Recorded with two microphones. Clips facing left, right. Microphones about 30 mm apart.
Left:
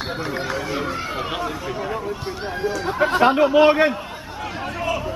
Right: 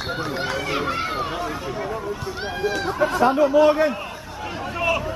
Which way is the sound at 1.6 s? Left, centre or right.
Centre.